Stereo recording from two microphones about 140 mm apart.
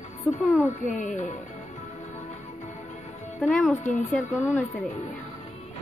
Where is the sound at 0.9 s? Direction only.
60° left (ahead or behind).